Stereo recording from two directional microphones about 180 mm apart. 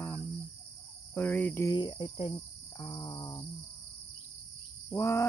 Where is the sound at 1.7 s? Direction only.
25° left (ahead or behind).